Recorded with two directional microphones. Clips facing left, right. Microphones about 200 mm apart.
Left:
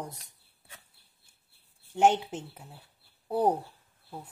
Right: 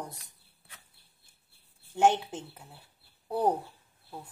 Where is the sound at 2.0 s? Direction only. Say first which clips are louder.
Left 1 dB; 15° left (ahead or behind).